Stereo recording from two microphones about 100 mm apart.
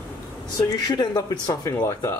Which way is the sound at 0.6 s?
40° left (ahead or behind).